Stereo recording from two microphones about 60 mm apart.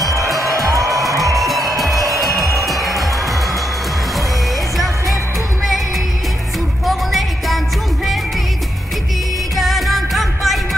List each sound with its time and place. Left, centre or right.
0.4 s music: right
1.4 s music: centre
6.9 s music: centre
9.6 s music: centre